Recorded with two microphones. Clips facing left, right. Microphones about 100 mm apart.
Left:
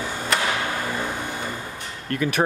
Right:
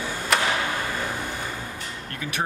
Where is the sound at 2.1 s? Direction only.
55° left (ahead or behind).